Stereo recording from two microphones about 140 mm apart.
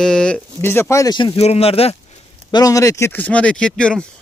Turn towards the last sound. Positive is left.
turn(degrees=5)  # may be behind; listen again after turning